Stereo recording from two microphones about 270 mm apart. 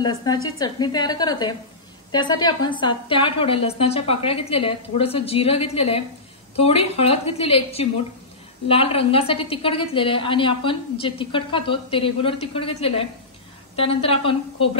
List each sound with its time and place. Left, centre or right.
0.0 s a woman's voice: centre